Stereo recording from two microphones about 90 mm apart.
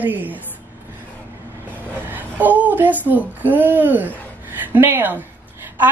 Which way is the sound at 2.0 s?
20° right (ahead or behind).